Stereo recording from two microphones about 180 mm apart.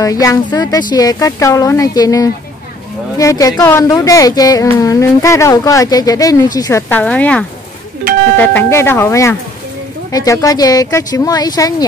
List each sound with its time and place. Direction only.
0.0 s speech: 20° left (ahead or behind)
8.0 s music: 50° right (ahead or behind)
8.4 s speech: 10° left (ahead or behind)